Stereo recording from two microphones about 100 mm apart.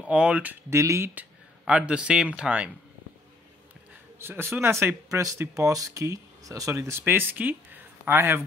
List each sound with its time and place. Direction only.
0.1 s speech: 15° right (ahead or behind)
0.7 s speech: 30° right (ahead or behind)
1.7 s speech: 10° right (ahead or behind)
4.2 s speech: 25° right (ahead or behind)